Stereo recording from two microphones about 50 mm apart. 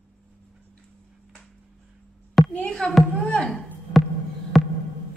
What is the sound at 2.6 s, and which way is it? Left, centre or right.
Speech, centre.